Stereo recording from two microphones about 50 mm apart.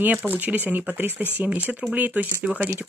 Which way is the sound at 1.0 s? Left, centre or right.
Right.